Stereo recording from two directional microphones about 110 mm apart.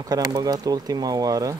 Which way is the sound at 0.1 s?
35° right (ahead or behind).